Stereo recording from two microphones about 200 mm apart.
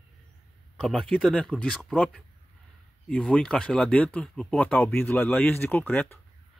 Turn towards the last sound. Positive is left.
turn(degrees=10)  # may be behind; listen again after turning